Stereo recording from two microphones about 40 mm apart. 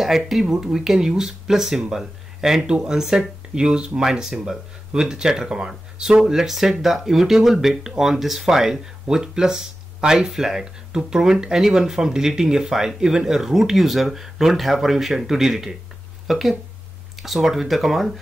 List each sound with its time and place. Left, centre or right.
0.0 s speech: centre
2.7 s speech: right
3.0 s speech: centre
3.5 s speech: right; by 18.2 s centre